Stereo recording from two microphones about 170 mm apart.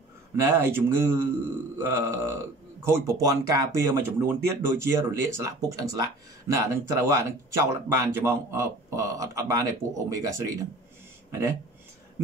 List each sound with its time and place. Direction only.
0.4 s speech: 15° right (ahead or behind)